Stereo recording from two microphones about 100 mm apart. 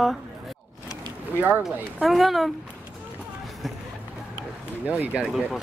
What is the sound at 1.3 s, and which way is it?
Speech, 15° right (ahead or behind).